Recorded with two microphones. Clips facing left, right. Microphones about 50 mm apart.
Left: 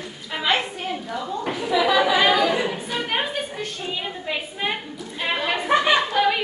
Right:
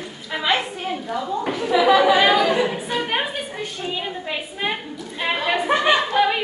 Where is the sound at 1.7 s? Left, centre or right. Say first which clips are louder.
Right 4 dB; right.